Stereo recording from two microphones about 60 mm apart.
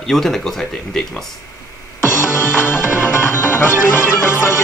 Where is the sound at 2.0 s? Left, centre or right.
Left.